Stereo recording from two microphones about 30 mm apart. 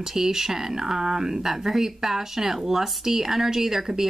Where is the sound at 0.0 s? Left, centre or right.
Centre.